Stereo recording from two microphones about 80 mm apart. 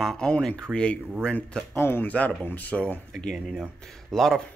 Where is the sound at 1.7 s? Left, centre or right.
Left.